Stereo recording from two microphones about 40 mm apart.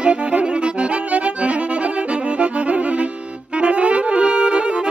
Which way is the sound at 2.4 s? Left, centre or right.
Right.